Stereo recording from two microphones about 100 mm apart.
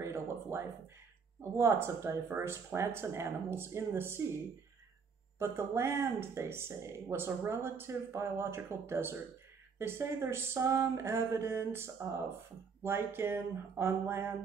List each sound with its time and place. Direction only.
0.0 s a sound: 25° right (ahead or behind)
1.4 s speech: 25° right (ahead or behind)
5.4 s speech: 25° right (ahead or behind)